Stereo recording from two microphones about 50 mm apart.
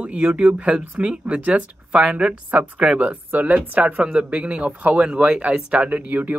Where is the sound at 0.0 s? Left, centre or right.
Right.